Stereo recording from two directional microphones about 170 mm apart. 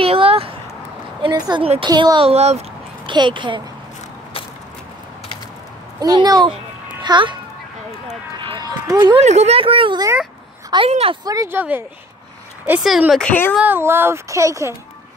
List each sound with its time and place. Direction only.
0.0 s a sound: 35° right (ahead or behind)
1.2 s a child's voice: 30° right (ahead or behind)
3.1 s a child's voice: 30° right (ahead or behind)
5.9 s a child's voice: 25° right (ahead or behind)
8.5 s run: 25° right (ahead or behind)
9.2 s speech: 40° right (ahead or behind); by 10.1 s 25° right (ahead or behind)
10.9 s speech: 35° right (ahead or behind)
11.2 s a child's voice: 15° right (ahead or behind); by 13.3 s centre (ahead or behind)
13.3 s speech: 10° left (ahead or behind)
13.6 s a child's voice: 10° right (ahead or behind)